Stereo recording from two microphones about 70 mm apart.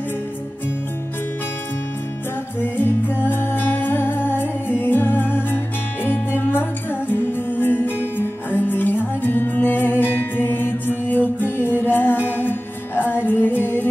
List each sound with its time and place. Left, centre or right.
2.6 s music: left